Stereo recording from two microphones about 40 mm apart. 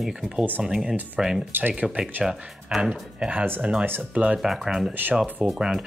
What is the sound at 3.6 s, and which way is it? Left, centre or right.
Speech, right.